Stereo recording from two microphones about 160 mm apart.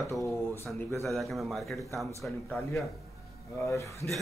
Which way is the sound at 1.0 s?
Centre (ahead or behind).